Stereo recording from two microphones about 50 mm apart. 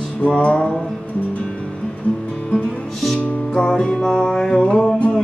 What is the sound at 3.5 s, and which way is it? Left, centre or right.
Music, centre.